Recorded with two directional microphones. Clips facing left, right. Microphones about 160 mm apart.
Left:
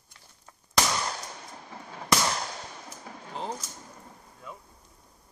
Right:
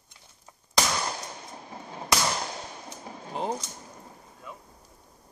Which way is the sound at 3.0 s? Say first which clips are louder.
Right 4 dB; 20° right (ahead or behind).